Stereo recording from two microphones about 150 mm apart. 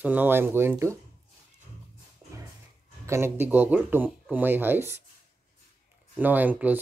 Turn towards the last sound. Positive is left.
turn(degrees=-10)  # may be behind; listen again after turning